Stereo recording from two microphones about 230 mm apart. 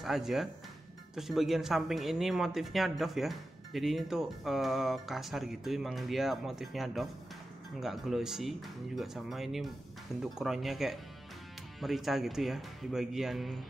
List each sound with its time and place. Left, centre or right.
0.0 s speech: centre